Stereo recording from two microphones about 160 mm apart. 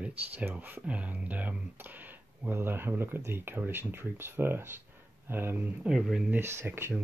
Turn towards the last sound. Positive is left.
turn(degrees=-15)  # may be behind; listen again after turning